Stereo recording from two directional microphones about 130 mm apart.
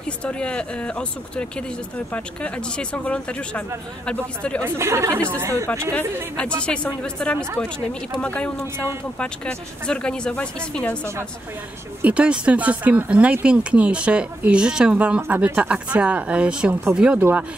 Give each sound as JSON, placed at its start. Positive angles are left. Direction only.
{"t": 0.2, "sound": "speech", "side_deg": 10}
{"t": 4.6, "sound": "speech", "side_deg": -20}
{"t": 6.6, "sound": "speech", "side_deg": 10}
{"t": 12.0, "sound": "speech", "side_deg": -10}